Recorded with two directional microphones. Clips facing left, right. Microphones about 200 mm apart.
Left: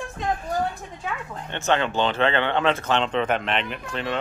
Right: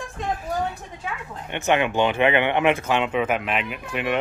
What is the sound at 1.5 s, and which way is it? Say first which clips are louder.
Speech: right 2 dB; 15° right (ahead or behind).